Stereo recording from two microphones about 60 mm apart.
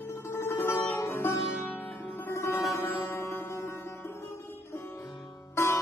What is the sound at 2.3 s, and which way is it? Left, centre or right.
Music, left.